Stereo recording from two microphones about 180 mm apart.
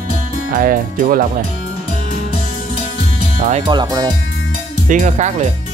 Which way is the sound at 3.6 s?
25° right (ahead or behind).